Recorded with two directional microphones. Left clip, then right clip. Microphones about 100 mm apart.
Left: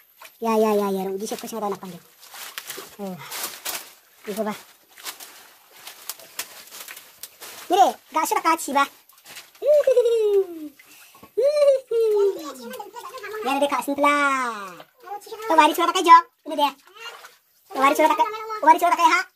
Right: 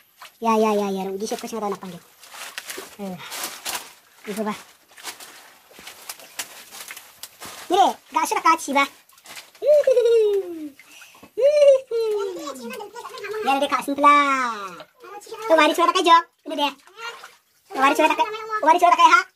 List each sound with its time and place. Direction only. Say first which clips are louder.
0.4 s speech: right 1 dB; 20° left (ahead or behind)
2.6 s a sound: right 1 dB; 20° left (ahead or behind)
3.0 s speech: left 2 dB; 5° left (ahead or behind)
7.7 s speech: even; 20° left (ahead or behind)
8.2 s speech: right 2 dB; 35° left (ahead or behind)
9.6 s pigeon: right 1 dB; 25° left (ahead or behind)
11.3 s a sound: right 3 dB; 30° left (ahead or behind)
13.5 s speech: right 1 dB; 30° left (ahead or behind)
17.7 s speech: even; 10° left (ahead or behind)